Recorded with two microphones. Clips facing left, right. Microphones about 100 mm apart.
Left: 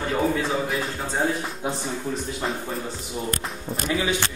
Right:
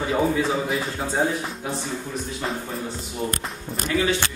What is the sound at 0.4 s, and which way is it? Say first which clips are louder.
Speech: right 2 dB; centre (ahead or behind).